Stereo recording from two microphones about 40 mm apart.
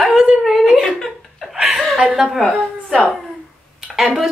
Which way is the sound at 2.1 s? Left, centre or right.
Centre.